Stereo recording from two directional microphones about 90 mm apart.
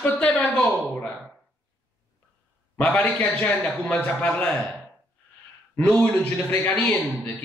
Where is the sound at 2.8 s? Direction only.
15° left (ahead or behind).